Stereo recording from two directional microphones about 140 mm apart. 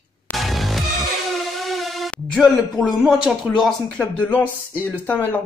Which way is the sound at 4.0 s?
10° left (ahead or behind).